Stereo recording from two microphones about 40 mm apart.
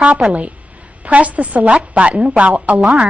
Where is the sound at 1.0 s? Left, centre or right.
Right.